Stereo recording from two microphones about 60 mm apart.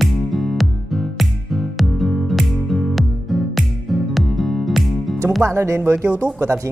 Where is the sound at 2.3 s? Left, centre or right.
Centre.